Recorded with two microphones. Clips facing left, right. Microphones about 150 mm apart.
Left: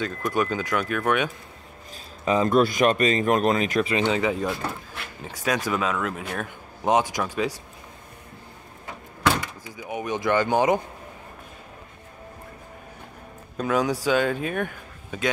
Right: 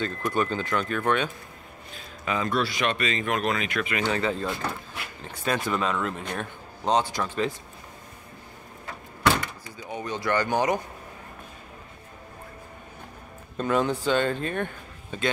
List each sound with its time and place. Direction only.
0.0 s speech: 10° left (ahead or behind)
2.2 s speech: 35° left (ahead or behind)
2.6 s speech: 45° left (ahead or behind)
4.0 s speech: 15° left (ahead or behind)
9.4 s speech: 15° left (ahead or behind)
13.6 s speech: 5° left (ahead or behind)